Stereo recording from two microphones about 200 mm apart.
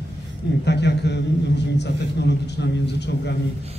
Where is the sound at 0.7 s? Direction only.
60° left (ahead or behind).